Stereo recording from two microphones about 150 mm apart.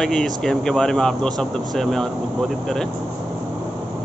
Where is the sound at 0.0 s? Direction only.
5° left (ahead or behind).